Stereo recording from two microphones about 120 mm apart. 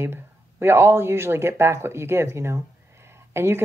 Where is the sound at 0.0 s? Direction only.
20° right (ahead or behind).